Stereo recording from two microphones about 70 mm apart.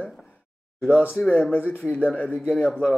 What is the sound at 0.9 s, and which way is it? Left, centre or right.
A man's voice, left.